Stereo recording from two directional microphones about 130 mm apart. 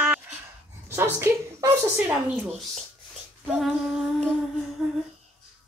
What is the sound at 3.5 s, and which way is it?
Female singing, 5° right (ahead or behind).